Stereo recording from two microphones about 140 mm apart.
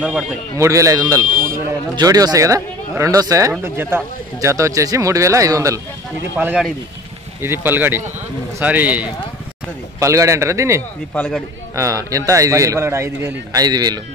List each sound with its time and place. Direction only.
0.0 s speech: 5° right (ahead or behind)
0.6 s a man's voice: 20° right (ahead or behind)
1.3 s speech: 85° right
2.0 s a man's voice: 25° right (ahead or behind)
6.3 s speech: 10° right (ahead or behind)
9.9 s a man's voice: 20° right (ahead or behind)
11.1 s speech: 5° left (ahead or behind)
11.7 s a man's voice: 25° right (ahead or behind)